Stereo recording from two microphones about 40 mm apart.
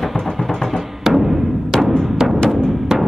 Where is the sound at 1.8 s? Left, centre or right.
Centre.